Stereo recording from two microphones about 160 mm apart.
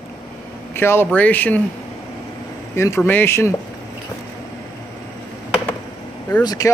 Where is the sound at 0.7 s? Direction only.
15° left (ahead or behind).